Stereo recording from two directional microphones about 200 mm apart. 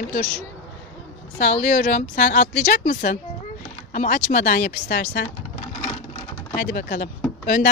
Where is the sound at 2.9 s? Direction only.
40° left (ahead or behind).